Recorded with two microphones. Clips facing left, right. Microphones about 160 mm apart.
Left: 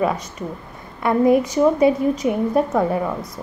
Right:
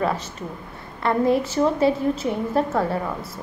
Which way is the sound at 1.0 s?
15° left (ahead or behind).